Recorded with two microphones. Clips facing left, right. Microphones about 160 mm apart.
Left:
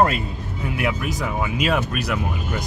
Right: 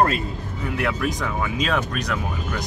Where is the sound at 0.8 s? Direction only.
10° left (ahead or behind).